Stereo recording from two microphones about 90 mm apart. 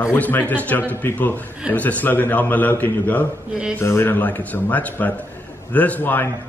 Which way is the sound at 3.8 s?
25° left (ahead or behind).